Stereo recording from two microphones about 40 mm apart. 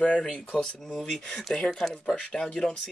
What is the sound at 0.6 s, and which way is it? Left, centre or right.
Speech, centre.